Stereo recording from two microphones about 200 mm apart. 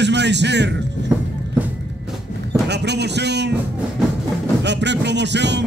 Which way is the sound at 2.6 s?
55° right (ahead or behind).